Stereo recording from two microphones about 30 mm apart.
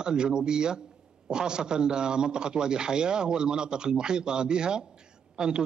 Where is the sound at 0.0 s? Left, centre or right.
Right.